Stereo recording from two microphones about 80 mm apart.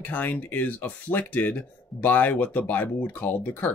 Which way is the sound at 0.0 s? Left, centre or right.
Left.